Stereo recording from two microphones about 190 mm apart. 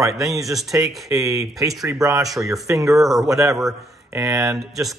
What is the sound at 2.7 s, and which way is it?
Speech, centre (ahead or behind).